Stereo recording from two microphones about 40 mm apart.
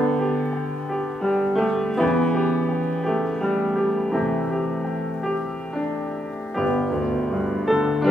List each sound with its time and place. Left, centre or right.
0.0 s music: centre
6.6 s music: centre
7.6 s music: centre